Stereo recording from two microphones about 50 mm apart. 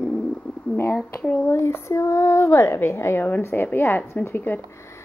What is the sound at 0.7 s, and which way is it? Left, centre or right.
Speech, left.